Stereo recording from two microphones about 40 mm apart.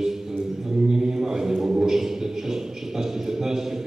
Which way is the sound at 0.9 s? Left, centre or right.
Centre.